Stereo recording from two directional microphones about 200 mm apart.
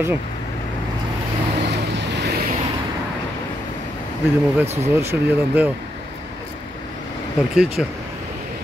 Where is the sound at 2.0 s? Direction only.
60° right (ahead or behind).